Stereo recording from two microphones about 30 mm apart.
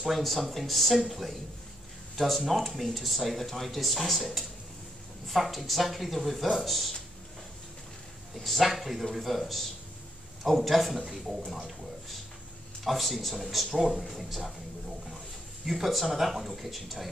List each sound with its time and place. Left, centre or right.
0.2 s speech: centre
8.4 s speech: centre
13.7 s speech: centre
13.9 s speech: centre
15.7 s speech: centre